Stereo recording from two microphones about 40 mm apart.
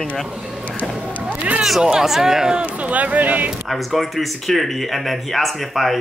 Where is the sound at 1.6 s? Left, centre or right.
Centre.